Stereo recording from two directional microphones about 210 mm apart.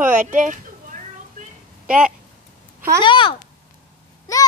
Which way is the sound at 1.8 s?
5° right (ahead or behind).